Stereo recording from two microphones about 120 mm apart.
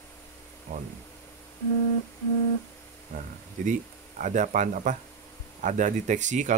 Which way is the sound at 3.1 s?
90° right.